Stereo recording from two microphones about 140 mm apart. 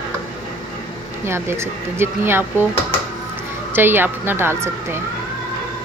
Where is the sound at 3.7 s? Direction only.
15° right (ahead or behind).